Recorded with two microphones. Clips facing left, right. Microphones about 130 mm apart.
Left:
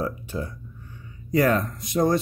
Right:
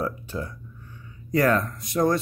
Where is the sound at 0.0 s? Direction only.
15° left (ahead or behind).